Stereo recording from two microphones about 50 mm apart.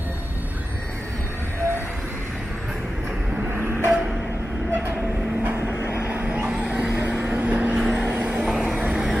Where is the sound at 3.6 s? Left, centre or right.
Right.